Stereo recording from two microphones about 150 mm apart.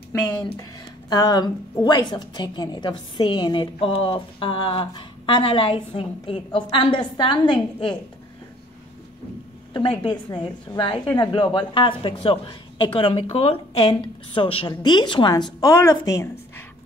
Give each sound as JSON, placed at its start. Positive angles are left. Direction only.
{"t": 1.1, "sound": "a woman's voice", "side_deg": 25}
{"t": 9.8, "sound": "a woman's voice", "side_deg": 30}